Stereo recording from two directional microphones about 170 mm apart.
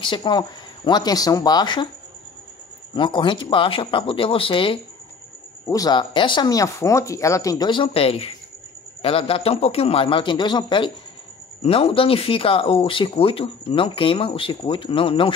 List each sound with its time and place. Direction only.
0.0 s speech: 30° left (ahead or behind)
2.9 s speech: 30° left (ahead or behind)